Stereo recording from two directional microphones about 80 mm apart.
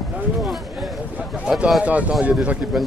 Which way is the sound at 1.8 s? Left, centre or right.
Centre.